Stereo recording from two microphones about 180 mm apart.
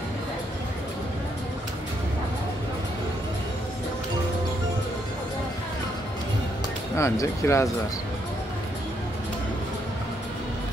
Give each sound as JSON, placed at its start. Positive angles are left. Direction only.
{"t": 7.0, "sound": "speech", "side_deg": 15}